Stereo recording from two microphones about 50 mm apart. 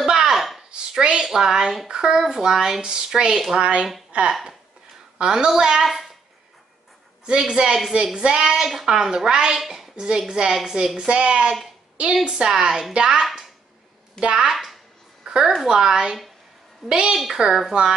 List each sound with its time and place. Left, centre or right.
0.0 s a sound: centre
0.7 s a sound: centre
1.2 s speech: centre
4.3 s a child's voice: centre
7.2 s a woman's voice: centre
14.2 s speech: centre
14.5 s a child's voice: centre